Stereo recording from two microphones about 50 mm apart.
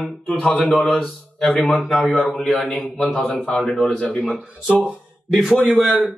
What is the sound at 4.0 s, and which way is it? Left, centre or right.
Speech, left.